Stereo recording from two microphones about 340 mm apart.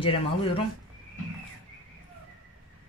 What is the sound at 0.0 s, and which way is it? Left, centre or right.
Speech, centre.